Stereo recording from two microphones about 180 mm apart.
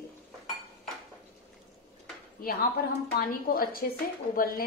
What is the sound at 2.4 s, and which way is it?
A woman's voice, 50° left (ahead or behind).